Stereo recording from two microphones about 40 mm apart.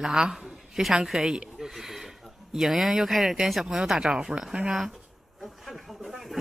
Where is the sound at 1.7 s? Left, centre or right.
Centre.